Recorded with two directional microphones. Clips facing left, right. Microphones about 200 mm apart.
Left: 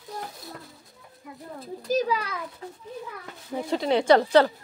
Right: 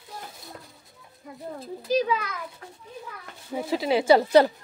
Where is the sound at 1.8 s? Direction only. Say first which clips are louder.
Right 1 dB; 40° left (ahead or behind).